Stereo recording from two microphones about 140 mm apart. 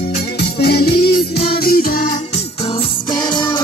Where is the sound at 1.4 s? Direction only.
90° left.